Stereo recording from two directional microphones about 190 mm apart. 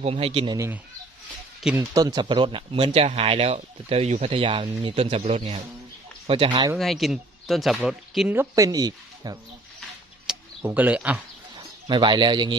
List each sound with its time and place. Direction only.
0.0 s speech: 30° right (ahead or behind)
1.6 s speech: 5° right (ahead or behind)
2.0 s speech: 20° right (ahead or behind)
6.8 s speech: centre (ahead or behind); by 9.4 s 20° right (ahead or behind)
10.2 s speech: 5° right (ahead or behind)
11.9 s speech: 25° right (ahead or behind)